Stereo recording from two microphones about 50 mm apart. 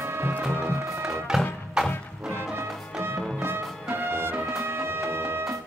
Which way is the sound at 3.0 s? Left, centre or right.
Right.